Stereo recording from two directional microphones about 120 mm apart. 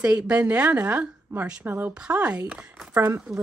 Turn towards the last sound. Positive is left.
turn(degrees=-20)  # may be behind; listen again after turning